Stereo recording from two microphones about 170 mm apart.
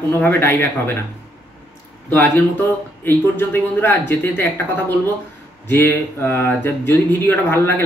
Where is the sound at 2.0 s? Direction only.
10° left (ahead or behind).